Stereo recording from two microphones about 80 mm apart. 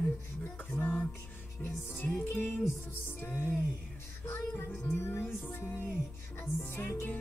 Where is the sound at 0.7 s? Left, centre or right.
Left.